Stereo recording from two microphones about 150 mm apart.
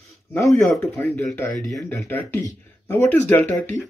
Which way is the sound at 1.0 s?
10° left (ahead or behind).